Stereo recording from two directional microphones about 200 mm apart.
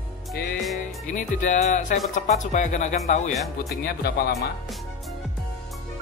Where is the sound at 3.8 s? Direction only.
50° left (ahead or behind).